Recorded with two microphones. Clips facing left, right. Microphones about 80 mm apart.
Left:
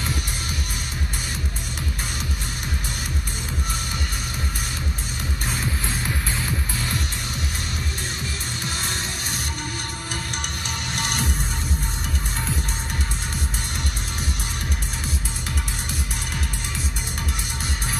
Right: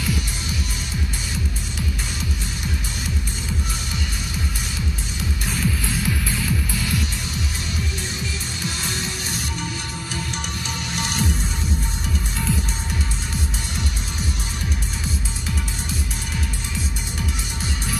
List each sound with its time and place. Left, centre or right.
5.5 s music: left
11.0 s music: left